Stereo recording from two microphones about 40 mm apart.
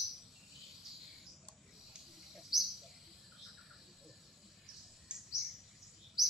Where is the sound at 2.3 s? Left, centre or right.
Centre.